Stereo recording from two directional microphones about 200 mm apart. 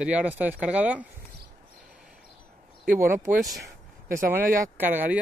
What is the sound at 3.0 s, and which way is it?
Speech, 15° right (ahead or behind).